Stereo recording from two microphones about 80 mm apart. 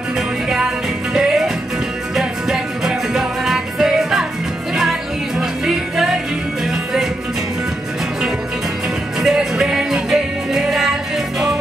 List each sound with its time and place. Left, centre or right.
1.1 s music: centre
5.4 s music: centre
9.2 s music: centre